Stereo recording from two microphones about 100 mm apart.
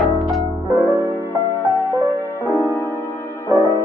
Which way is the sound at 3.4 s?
30° right (ahead or behind).